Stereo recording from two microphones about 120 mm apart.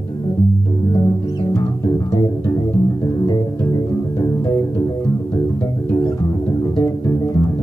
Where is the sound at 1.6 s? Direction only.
30° left (ahead or behind).